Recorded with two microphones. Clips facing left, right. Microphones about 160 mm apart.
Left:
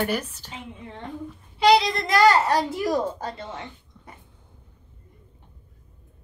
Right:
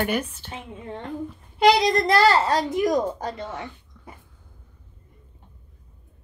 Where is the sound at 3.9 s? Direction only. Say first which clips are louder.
Right 2 dB; 25° left (ahead or behind).